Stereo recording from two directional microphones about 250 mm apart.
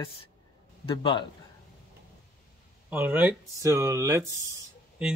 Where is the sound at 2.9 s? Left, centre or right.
Centre.